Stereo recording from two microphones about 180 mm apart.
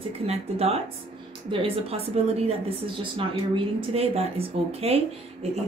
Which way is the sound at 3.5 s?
35° right (ahead or behind).